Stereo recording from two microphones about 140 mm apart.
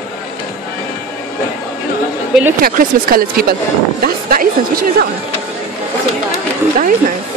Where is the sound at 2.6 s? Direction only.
85° right.